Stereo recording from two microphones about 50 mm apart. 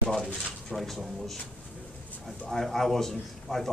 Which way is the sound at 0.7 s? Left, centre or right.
Centre.